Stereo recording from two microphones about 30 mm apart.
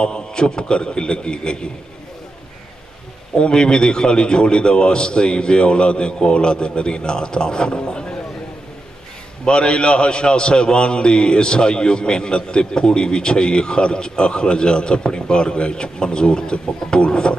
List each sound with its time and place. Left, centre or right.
0.0 s a man's voice: left
3.3 s a man's voice: left
9.4 s a man's voice: left